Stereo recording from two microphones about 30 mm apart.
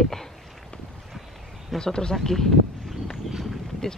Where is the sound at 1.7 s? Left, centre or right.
Left.